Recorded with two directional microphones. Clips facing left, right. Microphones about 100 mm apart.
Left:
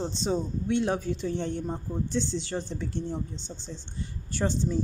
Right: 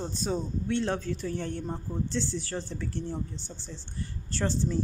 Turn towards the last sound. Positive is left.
turn(degrees=15)  # may be behind; listen again after turning